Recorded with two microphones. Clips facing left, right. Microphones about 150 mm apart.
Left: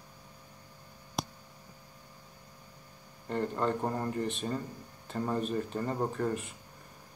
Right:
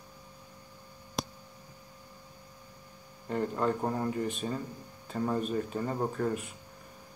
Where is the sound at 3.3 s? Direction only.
5° right (ahead or behind).